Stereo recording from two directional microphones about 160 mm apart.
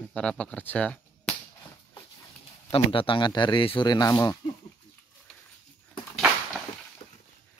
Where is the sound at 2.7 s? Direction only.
35° left (ahead or behind).